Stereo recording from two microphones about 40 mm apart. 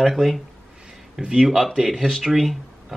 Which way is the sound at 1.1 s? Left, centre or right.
Centre.